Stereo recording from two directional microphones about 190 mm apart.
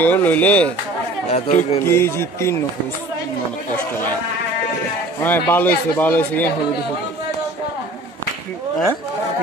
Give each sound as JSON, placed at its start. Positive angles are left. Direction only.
{"t": 0.0, "sound": "a man's voice", "side_deg": 10}
{"t": 1.3, "sound": "speech", "side_deg": 35}
{"t": 1.9, "sound": "a man's voice", "side_deg": 15}
{"t": 5.2, "sound": "a man's voice", "side_deg": 10}